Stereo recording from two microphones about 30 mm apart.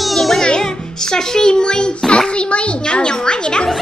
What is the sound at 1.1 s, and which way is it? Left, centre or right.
A child's voice, left.